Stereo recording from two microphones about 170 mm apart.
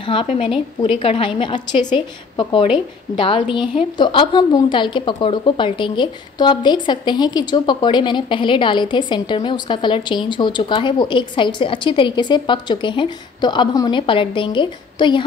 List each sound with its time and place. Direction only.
0.0 s a woman's voice: 30° left (ahead or behind)